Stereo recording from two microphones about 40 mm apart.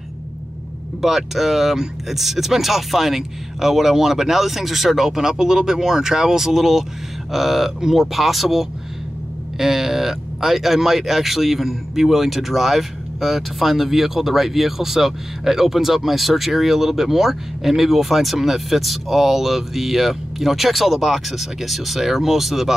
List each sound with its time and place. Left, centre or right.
1.0 s speech: centre